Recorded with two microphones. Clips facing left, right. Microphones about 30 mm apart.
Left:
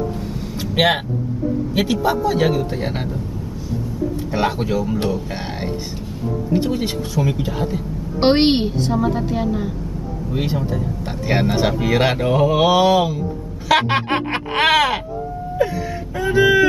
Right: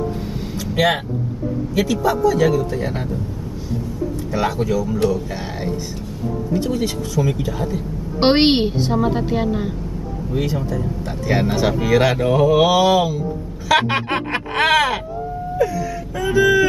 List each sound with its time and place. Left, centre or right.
0.6 s vehicle: left
1.8 s speech: left
4.3 s speech: left
6.5 s speech: left
8.2 s a woman's voice: centre
10.3 s speech: left
11.6 s speech: centre
12.2 s mantra: centre
13.7 s speech: left
15.6 s whimper: left
16.3 s speech: left